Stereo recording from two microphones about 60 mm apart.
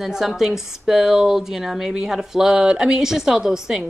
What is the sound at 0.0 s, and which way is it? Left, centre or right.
Speech, centre.